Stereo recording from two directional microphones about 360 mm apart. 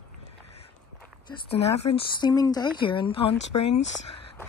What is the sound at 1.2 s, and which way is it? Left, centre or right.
Speech, centre.